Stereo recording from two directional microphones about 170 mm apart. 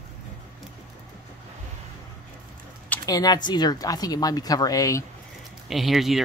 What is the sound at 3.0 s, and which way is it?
Speech, 20° left (ahead or behind).